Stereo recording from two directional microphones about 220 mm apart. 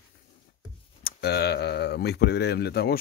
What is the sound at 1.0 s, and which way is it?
Speech, 45° left (ahead or behind).